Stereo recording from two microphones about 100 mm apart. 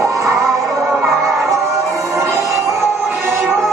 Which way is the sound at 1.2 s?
30° right (ahead or behind).